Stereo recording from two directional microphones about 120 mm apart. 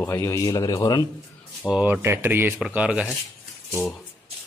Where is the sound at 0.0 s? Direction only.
20° left (ahead or behind).